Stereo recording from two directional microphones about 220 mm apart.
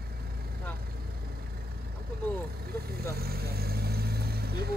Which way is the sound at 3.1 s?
45° right (ahead or behind).